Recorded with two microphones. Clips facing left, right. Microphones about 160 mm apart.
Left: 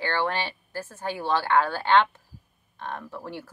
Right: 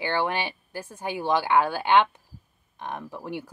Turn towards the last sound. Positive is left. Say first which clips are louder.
# right 2 dB
turn(degrees=-15)  # may be behind; listen again after turning